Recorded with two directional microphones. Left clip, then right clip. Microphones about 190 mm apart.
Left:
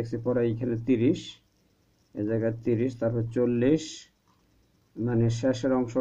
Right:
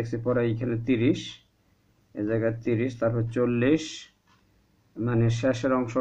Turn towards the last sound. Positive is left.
turn(degrees=45)  # may be behind; listen again after turning